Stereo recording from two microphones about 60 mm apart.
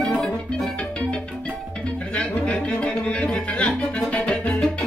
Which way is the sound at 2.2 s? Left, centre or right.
Centre.